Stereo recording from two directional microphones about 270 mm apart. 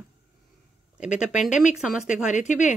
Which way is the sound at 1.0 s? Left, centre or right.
Centre.